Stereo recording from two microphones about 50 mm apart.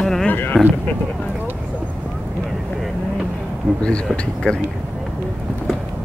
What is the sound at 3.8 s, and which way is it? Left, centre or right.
Speech, left.